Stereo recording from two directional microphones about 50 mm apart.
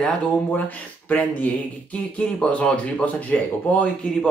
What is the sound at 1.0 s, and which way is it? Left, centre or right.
Speech, left.